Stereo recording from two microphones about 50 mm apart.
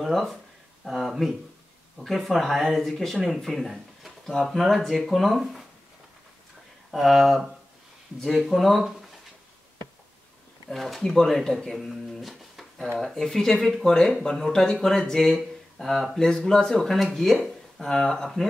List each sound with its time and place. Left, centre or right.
0.0 s speech: centre
6.9 s speech: centre
10.7 s speech: centre